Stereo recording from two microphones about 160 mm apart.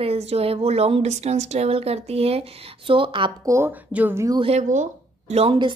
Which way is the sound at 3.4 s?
15° right (ahead or behind).